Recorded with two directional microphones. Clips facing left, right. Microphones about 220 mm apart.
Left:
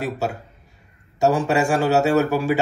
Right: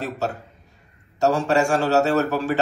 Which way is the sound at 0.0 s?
15° left (ahead or behind).